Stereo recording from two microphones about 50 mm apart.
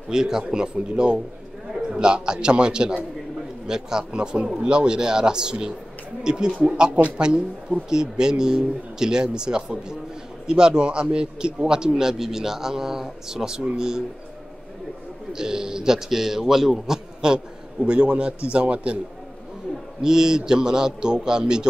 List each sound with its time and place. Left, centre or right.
0.1 s a man's voice: centre
15.3 s a man's voice: centre
17.8 s a man's voice: right
20.0 s a man's voice: centre